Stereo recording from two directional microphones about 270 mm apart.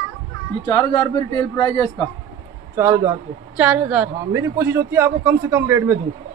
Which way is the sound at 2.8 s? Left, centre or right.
Centre.